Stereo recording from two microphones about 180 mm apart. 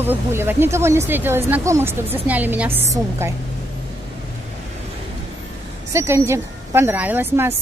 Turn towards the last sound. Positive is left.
turn(degrees=-10)  # may be behind; listen again after turning